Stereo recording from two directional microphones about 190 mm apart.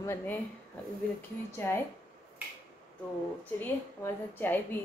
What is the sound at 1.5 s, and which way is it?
Speech, 15° left (ahead or behind).